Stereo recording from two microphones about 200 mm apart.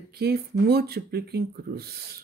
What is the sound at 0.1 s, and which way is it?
Speech, 50° right (ahead or behind).